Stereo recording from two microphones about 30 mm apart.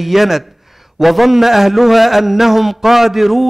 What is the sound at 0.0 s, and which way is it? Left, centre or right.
A man's voice, centre.